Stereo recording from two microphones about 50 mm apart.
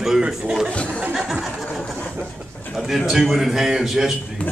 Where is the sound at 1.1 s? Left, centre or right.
Centre.